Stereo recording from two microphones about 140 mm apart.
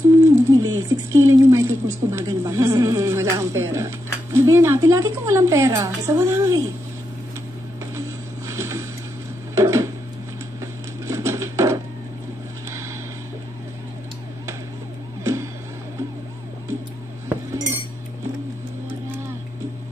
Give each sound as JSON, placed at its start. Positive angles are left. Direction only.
{"t": 0.2, "sound": "speech", "side_deg": -20}
{"t": 8.5, "sound": "boat", "side_deg": -20}
{"t": 9.6, "sound": "a sound", "side_deg": -20}